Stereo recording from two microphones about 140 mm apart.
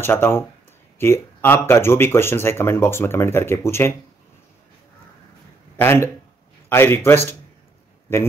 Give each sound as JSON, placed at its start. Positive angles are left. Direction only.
{"t": 0.0, "sound": "speech", "side_deg": 15}
{"t": 5.8, "sound": "speech", "side_deg": 15}